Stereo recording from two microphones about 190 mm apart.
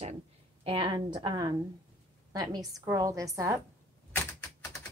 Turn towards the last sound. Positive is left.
turn(degrees=10)  # may be behind; listen again after turning